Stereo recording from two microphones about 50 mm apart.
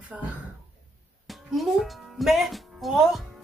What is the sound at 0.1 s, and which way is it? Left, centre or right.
Speech, right.